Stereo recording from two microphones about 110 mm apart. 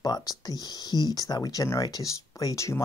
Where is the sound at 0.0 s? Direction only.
35° left (ahead or behind).